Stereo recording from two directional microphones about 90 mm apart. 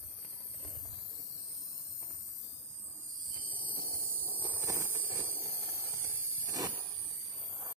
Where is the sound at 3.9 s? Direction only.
20° right (ahead or behind).